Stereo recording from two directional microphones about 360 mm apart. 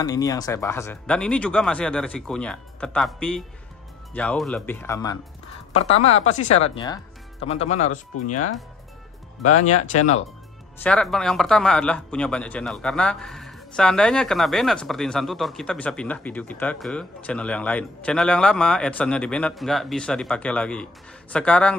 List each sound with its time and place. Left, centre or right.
0.0 s a man's voice: centre
8.1 s speech: left
9.5 s speech: centre
10.8 s a man's voice: centre